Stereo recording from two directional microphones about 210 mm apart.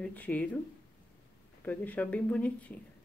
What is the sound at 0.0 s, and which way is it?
Speech, 5° left (ahead or behind).